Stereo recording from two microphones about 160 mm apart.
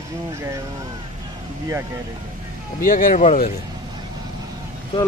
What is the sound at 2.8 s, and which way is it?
Speech, 60° left (ahead or behind).